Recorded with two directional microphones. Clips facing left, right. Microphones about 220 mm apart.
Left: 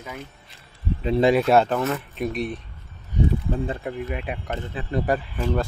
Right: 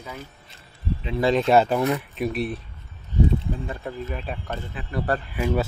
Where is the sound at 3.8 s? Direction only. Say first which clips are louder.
Left 2 dB; 15° left (ahead or behind).